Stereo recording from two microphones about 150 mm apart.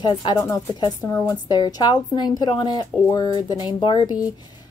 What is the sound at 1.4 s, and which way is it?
A woman's voice, 25° left (ahead or behind).